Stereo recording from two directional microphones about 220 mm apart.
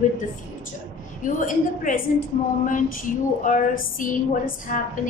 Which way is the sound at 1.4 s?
35° left (ahead or behind).